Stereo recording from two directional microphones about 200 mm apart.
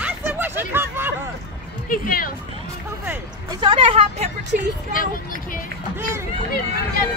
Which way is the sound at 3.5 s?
25° right (ahead or behind).